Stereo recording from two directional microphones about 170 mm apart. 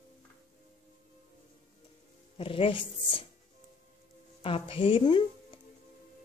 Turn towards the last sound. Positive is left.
turn(degrees=30)  # may be behind; listen again after turning